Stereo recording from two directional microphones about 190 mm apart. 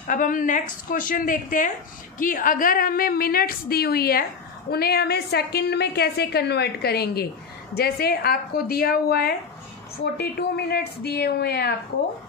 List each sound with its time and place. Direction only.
0.0 s a woman's voice: 45° left (ahead or behind)